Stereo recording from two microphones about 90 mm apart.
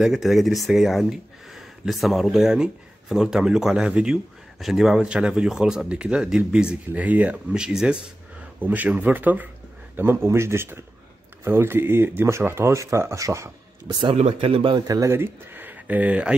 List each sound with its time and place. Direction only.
0.0 s speech: centre (ahead or behind)
8.5 s speech: 20° right (ahead or behind); by 13.5 s 35° right (ahead or behind)
14.0 s speech: 85° right
14.9 s speech: 40° right (ahead or behind)
15.1 s speech: 25° right (ahead or behind)